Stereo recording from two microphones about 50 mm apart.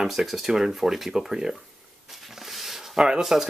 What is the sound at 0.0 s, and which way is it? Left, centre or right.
Speech, centre.